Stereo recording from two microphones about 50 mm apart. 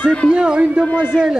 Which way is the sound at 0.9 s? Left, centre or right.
Left.